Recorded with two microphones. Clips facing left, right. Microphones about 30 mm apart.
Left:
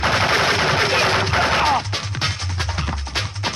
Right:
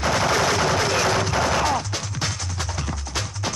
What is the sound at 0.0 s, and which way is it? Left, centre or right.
Gunshot, left.